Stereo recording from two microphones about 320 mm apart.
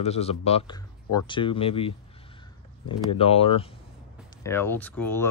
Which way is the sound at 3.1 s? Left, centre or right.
Centre.